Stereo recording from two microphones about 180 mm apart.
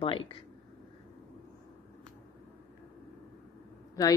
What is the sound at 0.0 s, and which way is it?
Speech, 30° left (ahead or behind).